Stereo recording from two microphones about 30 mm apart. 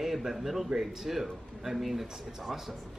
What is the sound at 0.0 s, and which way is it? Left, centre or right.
A woman's voice, centre.